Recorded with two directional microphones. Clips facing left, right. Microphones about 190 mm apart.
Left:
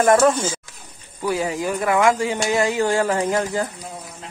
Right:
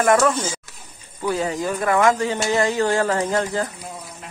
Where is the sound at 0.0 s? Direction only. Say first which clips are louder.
Left 2 dB; 25° left (ahead or behind).